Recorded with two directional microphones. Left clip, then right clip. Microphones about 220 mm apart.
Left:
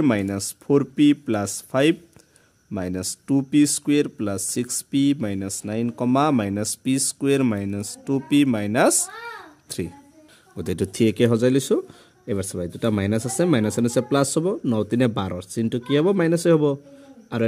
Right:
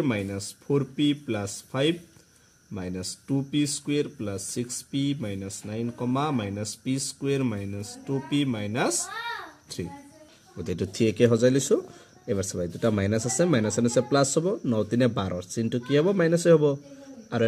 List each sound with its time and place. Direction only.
0.0 s speech: 50° left (ahead or behind)
10.6 s speech: 55° left (ahead or behind)